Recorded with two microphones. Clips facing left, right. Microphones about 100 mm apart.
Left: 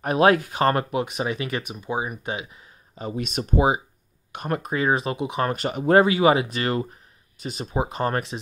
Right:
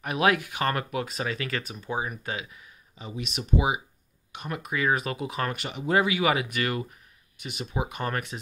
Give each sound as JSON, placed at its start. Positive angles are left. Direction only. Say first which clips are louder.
{"t": 0.0, "sound": "speech", "louder": "left 6 dB", "side_deg": 35}
{"t": 3.0, "sound": "speech", "louder": "left 7 dB", "side_deg": 45}
{"t": 4.7, "sound": "speech", "louder": "left 2 dB", "side_deg": 30}
{"t": 5.5, "sound": "speech", "louder": "left 9 dB", "side_deg": 45}